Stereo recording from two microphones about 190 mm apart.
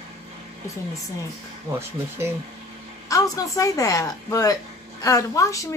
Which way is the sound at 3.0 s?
15° left (ahead or behind).